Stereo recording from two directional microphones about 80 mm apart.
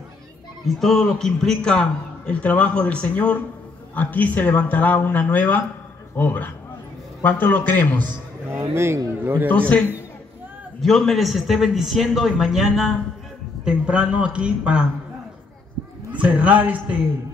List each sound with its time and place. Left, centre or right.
0.7 s a man's voice: centre; by 8.2 s left
8.5 s speech: right
9.5 s a man's voice: centre
10.8 s a man's voice: centre
16.1 s a man's voice: centre